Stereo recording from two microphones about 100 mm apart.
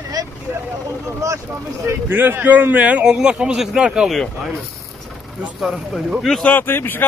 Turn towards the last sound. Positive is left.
turn(degrees=20)  # may be behind; listen again after turning